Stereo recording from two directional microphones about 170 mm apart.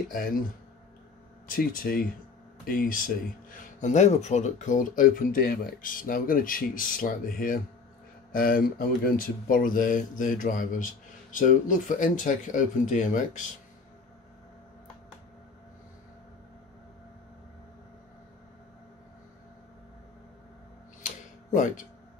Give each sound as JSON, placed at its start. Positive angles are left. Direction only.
{"t": 0.1, "sound": "speech", "side_deg": 55}
{"t": 1.5, "sound": "speech", "side_deg": 55}
{"t": 21.0, "sound": "tick-tock", "side_deg": 50}